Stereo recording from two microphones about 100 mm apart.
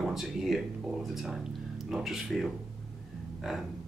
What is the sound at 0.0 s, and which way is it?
Speech, centre (ahead or behind).